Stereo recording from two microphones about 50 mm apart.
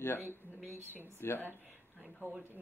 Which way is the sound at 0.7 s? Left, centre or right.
Right.